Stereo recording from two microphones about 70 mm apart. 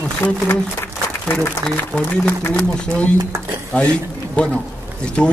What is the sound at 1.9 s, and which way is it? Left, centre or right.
Speech, centre.